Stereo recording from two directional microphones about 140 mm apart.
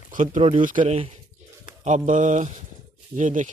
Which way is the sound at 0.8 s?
45° right (ahead or behind).